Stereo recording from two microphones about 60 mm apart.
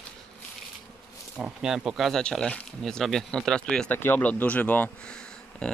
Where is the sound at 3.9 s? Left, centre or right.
Left.